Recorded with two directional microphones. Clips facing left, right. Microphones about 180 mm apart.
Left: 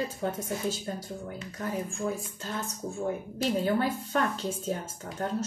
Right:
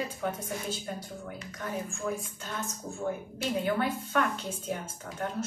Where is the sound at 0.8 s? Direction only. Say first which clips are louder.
Left 2 dB; 35° left (ahead or behind).